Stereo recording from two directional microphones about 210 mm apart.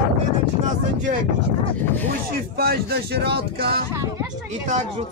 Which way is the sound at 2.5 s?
45° right (ahead or behind).